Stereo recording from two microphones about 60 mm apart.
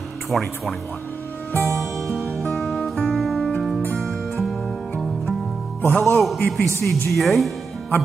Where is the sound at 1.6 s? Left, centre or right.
Centre.